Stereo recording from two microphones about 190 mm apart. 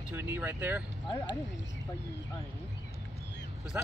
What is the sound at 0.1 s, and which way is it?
Speech, 10° right (ahead or behind).